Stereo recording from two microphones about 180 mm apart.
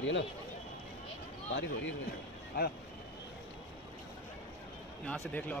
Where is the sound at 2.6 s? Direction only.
60° left (ahead or behind).